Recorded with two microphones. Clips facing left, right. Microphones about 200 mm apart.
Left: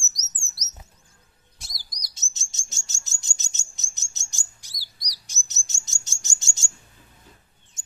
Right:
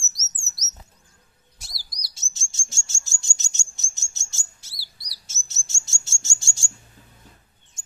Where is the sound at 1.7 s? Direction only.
20° left (ahead or behind).